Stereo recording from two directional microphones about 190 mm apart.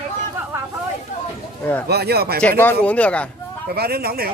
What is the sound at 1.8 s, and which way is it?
Speech, 55° right (ahead or behind).